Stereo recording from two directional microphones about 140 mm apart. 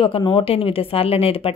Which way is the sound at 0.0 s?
35° left (ahead or behind).